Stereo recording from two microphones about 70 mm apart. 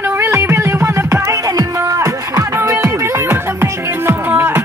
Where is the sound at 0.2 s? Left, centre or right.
Right.